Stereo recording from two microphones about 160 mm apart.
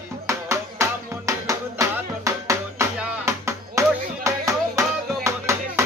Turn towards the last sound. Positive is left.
turn(degrees=-20)  # may be behind; listen again after turning